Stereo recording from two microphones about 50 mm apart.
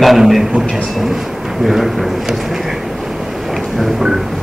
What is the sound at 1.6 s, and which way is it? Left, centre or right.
Speech, centre.